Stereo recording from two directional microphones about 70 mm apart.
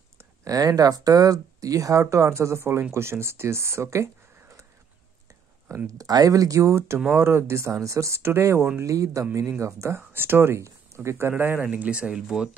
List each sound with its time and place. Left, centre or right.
0.5 s speech: right
5.9 s speech: right
11.7 s speech: centre